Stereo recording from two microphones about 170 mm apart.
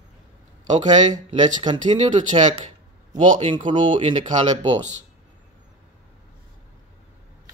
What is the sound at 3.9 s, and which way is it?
Speech, 45° right (ahead or behind).